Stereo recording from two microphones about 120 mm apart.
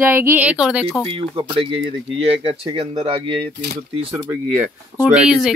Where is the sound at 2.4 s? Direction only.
50° right (ahead or behind).